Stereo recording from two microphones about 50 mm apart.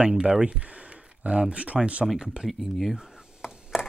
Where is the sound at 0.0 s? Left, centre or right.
Centre.